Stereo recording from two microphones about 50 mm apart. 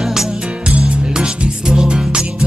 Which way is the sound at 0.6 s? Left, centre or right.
Right.